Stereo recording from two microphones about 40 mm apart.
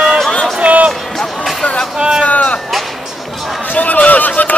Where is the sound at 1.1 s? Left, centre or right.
Centre.